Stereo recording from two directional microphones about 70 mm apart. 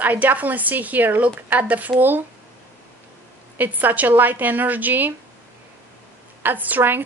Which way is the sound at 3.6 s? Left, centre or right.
Right.